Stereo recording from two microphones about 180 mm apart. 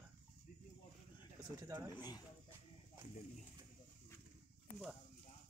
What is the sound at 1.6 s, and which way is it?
Speech, 15° right (ahead or behind).